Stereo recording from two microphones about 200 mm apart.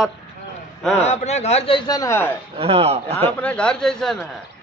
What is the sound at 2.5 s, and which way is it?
Speech, 30° right (ahead or behind).